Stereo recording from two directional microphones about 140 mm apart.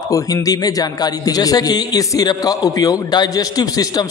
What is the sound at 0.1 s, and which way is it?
A man's voice, 25° left (ahead or behind).